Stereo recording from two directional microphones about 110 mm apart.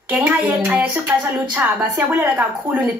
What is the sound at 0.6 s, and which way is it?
A woman's voice, 15° right (ahead or behind).